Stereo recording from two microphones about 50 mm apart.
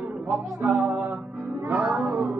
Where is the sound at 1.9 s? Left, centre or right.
Right.